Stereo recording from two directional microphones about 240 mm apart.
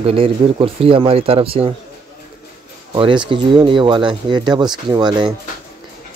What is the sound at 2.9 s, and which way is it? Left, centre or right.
Speech, centre.